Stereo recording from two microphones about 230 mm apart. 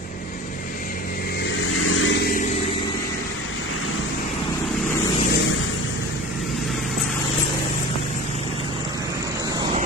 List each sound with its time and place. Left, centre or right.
1.8 s vehicle: left